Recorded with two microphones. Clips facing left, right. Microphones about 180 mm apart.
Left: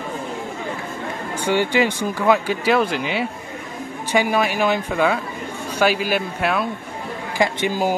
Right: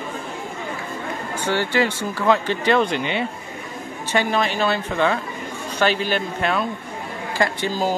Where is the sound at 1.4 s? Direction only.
15° left (ahead or behind).